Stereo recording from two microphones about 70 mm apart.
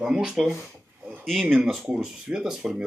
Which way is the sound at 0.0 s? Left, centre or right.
Centre.